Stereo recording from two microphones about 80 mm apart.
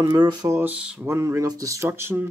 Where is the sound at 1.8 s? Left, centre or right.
Right.